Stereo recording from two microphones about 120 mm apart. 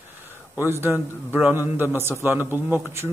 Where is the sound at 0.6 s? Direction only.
20° right (ahead or behind).